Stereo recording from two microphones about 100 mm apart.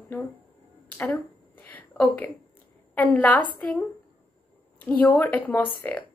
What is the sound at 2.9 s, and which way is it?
A woman's voice, 15° left (ahead or behind).